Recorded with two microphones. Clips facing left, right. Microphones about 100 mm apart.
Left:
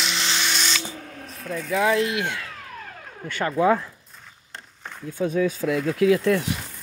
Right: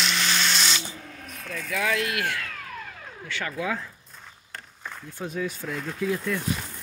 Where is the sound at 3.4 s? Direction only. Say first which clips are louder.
Left 11 dB; 40° left (ahead or behind).